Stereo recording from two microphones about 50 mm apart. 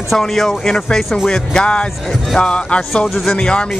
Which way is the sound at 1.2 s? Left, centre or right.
Centre.